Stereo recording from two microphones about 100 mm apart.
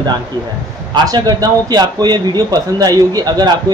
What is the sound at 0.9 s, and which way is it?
Speech, 40° right (ahead or behind).